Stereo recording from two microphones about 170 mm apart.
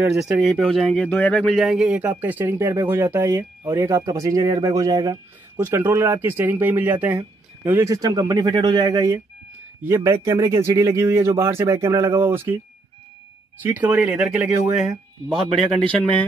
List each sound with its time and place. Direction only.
0.1 s speech: centre (ahead or behind)
13.6 s speech: 10° right (ahead or behind)